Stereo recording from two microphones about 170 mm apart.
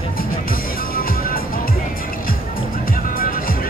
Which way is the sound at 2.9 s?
55° left (ahead or behind).